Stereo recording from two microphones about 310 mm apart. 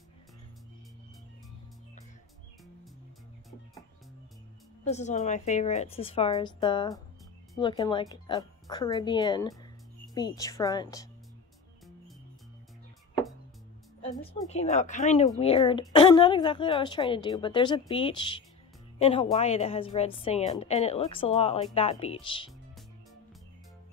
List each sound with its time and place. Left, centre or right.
4.8 s a woman's voice: left
14.0 s a woman's voice: centre